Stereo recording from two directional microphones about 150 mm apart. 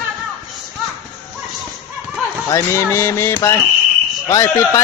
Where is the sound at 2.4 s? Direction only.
20° left (ahead or behind).